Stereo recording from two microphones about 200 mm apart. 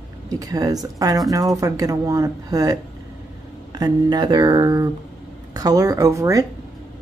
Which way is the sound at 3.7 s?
20° right (ahead or behind).